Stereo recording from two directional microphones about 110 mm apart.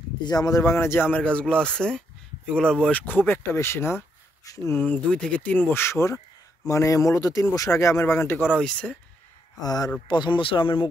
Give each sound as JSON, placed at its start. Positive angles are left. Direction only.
{"t": 0.2, "sound": "speech", "side_deg": 35}
{"t": 5.0, "sound": "speech", "side_deg": 5}
{"t": 8.5, "sound": "speech", "side_deg": 10}
{"t": 9.6, "sound": "speech", "side_deg": 35}